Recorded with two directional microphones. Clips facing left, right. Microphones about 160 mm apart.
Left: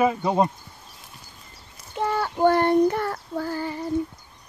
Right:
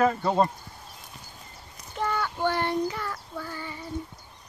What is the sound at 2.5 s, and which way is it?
Child singing, 55° left (ahead or behind).